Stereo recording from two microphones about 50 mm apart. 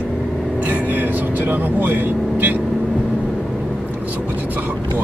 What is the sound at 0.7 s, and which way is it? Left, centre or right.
Vehicle, right.